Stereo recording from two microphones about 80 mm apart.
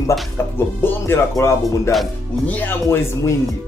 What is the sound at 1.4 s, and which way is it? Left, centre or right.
Speech, left.